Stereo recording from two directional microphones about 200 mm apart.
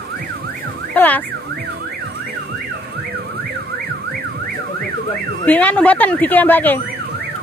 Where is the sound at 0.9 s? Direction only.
10° left (ahead or behind).